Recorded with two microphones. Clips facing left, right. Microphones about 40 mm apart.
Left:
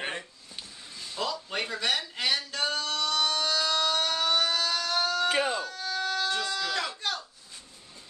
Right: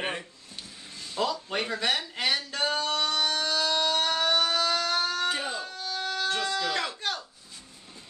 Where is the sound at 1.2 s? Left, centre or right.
Centre.